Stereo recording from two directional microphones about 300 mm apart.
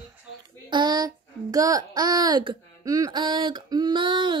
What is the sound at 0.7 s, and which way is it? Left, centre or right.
Speech, centre.